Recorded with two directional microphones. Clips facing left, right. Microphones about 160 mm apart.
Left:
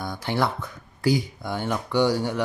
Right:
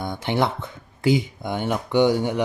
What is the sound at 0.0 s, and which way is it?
Speech, 20° right (ahead or behind).